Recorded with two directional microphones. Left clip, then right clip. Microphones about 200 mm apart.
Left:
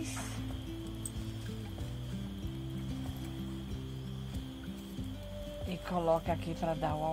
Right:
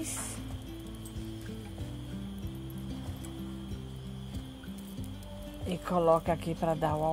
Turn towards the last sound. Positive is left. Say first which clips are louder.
# right 4 dB
turn(degrees=-30)  # may be behind; listen again after turning